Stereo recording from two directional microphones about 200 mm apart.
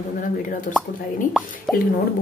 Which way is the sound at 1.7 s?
Centre (ahead or behind).